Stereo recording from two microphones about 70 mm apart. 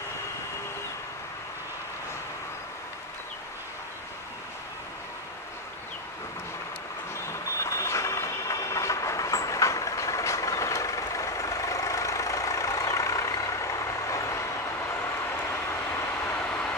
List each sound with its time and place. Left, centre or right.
7.6 s train: left
16.4 s vehicle: centre